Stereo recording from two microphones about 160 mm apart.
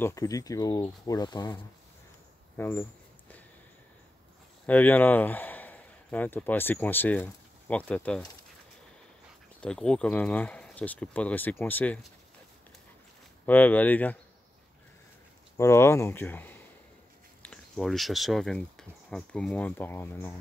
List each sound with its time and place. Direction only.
0.0 s speech: 20° left (ahead or behind)
2.5 s a sound: 10° left (ahead or behind)
4.6 s speech: 10° left (ahead or behind)
9.6 s speech: 5° left (ahead or behind)
13.5 s speech: 10° left (ahead or behind)
15.5 s speech: 15° left (ahead or behind)